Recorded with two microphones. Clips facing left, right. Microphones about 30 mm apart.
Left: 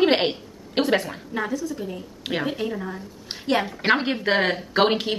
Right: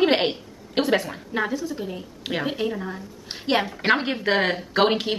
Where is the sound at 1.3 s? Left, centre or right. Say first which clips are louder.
Right 1 dB; right.